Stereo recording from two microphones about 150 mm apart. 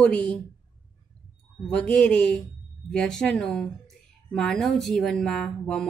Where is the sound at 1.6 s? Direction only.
5° left (ahead or behind).